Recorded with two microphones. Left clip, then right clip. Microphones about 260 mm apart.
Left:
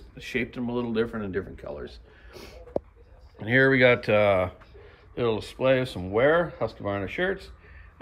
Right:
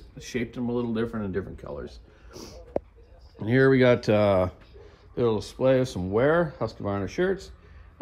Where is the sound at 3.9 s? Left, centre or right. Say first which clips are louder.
Even; right.